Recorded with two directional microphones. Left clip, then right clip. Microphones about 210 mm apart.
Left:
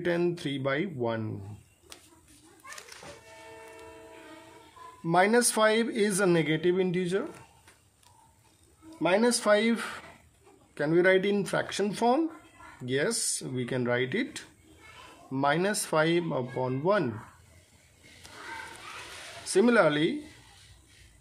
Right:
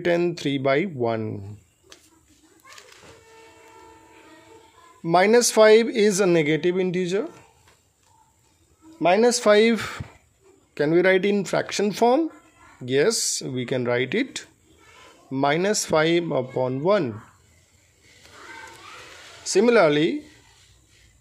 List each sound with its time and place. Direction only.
0.0 s speech: 35° right (ahead or behind)
5.0 s speech: 35° right (ahead or behind)
9.0 s speech: 35° right (ahead or behind)
19.4 s speech: 35° right (ahead or behind)